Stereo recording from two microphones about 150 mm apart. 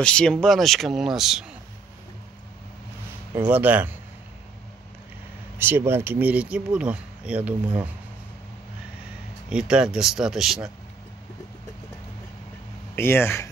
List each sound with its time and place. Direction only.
0.0 s speech: 5° left (ahead or behind)
3.3 s speech: 10° right (ahead or behind)
5.6 s speech: 15° right (ahead or behind)
9.5 s speech: 5° right (ahead or behind)
12.9 s speech: 15° left (ahead or behind)